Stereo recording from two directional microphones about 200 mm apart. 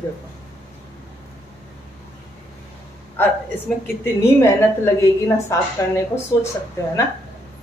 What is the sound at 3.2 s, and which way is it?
A woman's voice, 10° left (ahead or behind).